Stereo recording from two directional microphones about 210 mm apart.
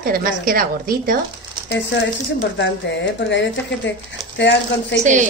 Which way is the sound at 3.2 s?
60° left (ahead or behind).